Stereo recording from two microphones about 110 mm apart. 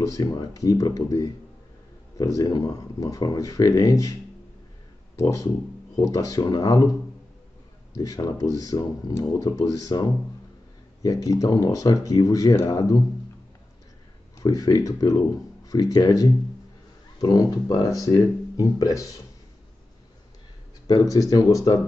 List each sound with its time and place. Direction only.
0.0 s speech: 30° left (ahead or behind)
5.1 s speech: 30° left (ahead or behind)
7.9 s speech: 30° left (ahead or behind)
14.4 s speech: 30° left (ahead or behind)
20.8 s speech: 35° left (ahead or behind)